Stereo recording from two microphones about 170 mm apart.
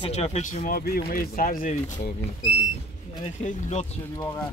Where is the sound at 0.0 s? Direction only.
40° left (ahead or behind).